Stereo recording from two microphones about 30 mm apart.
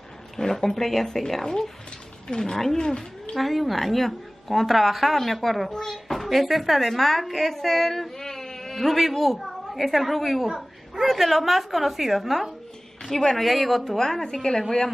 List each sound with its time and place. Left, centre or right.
0.4 s a woman's voice: centre
2.2 s speech: left
3.3 s a woman's voice: centre
5.7 s a child's voice: centre
6.1 s a woman's voice: centre
8.2 s a sound: centre
8.9 s a woman's voice: centre
10.4 s a sound: centre
11.1 s a woman's voice: centre
13.0 s a woman's voice: centre
13.4 s a woman's voice: centre
13.9 s a woman's voice: centre